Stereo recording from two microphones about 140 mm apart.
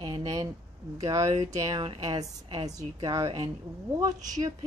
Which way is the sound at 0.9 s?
25° right (ahead or behind).